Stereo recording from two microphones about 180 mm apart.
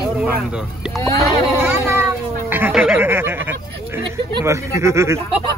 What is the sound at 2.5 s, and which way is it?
Speech, 10° right (ahead or behind).